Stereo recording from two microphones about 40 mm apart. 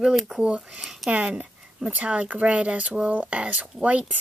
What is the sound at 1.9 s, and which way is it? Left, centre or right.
Speech, right.